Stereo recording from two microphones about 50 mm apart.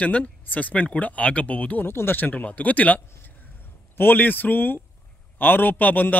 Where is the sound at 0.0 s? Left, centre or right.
Left.